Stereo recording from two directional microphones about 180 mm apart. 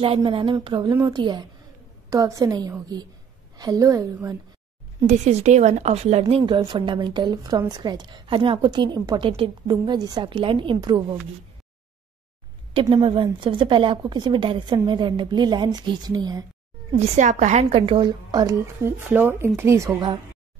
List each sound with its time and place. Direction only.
0.0 s a woman's voice: 30° right (ahead or behind)
5.0 s a woman's voice: 40° right (ahead or behind); by 11.1 s 25° right (ahead or behind)
12.7 s a woman's voice: 30° right (ahead or behind)
17.0 s a woman's voice: 40° right (ahead or behind); by 20.2 s 20° right (ahead or behind)